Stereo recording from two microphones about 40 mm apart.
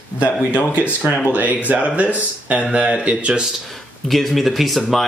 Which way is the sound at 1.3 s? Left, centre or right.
Right.